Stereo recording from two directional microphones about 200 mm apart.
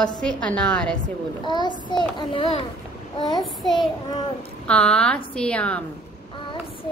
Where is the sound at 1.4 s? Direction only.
20° left (ahead or behind).